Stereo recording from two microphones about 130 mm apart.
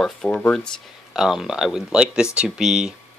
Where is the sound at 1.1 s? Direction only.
5° right (ahead or behind).